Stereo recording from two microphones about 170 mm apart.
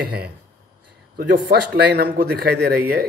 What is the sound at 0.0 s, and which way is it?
Speech, 65° right (ahead or behind).